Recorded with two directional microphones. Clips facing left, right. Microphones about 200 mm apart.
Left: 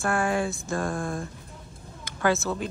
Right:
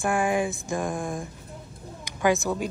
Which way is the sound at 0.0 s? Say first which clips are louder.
Right 1 dB; 15° right (ahead or behind).